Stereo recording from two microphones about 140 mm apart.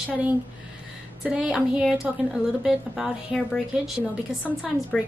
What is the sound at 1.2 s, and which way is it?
A woman's voice, 5° right (ahead or behind).